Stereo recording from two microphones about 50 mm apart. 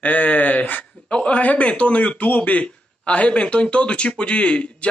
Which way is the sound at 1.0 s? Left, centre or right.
Left.